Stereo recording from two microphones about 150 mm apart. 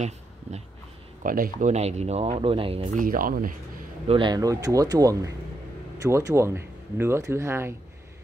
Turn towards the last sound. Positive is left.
turn(degrees=-15)  # may be behind; listen again after turning